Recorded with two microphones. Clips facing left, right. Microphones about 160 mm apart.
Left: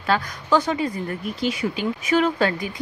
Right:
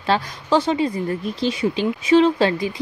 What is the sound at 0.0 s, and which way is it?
Speech, 30° right (ahead or behind).